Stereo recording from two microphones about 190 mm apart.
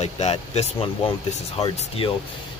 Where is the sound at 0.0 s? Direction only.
35° left (ahead or behind).